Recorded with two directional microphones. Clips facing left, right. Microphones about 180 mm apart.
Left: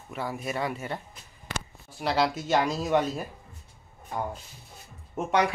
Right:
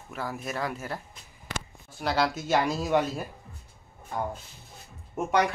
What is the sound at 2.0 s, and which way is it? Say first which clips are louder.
Speech: left 1 dB; centre (ahead or behind).